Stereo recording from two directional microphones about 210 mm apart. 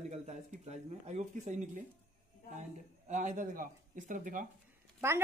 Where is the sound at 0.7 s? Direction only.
30° right (ahead or behind).